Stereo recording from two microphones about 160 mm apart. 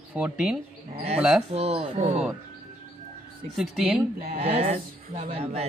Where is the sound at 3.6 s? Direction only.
5° right (ahead or behind).